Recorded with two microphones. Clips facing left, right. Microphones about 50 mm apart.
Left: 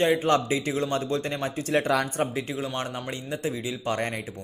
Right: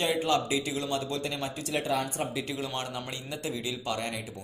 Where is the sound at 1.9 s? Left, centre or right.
Left.